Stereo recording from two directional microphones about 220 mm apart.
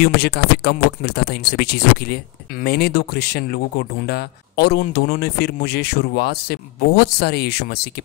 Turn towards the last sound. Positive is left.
turn(degrees=45)  # may be behind; listen again after turning